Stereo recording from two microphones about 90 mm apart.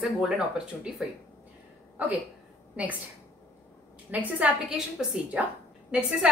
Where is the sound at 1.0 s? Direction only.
5° right (ahead or behind).